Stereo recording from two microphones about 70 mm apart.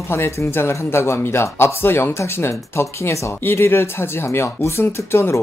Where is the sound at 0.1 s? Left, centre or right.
Left.